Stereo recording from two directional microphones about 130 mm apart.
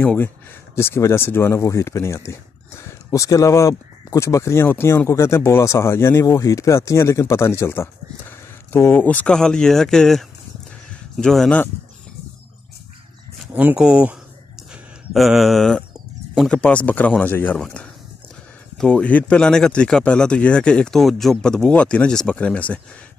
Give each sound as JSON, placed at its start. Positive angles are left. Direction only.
{"t": 0.0, "sound": "speech", "side_deg": 10}
{"t": 13.5, "sound": "speech", "side_deg": -10}
{"t": 18.8, "sound": "speech", "side_deg": 5}